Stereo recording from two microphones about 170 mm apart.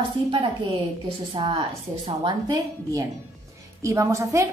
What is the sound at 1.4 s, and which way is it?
A woman's voice, 30° right (ahead or behind).